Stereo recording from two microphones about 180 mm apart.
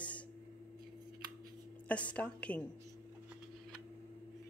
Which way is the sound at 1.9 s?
5° left (ahead or behind).